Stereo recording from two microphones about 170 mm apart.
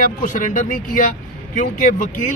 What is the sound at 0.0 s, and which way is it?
Speech, 50° left (ahead or behind).